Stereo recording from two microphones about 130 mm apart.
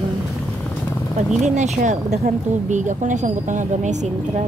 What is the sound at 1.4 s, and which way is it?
A woman's voice, 65° right (ahead or behind).